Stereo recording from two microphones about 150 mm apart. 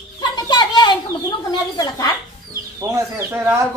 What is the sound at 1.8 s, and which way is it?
Speech, 25° left (ahead or behind).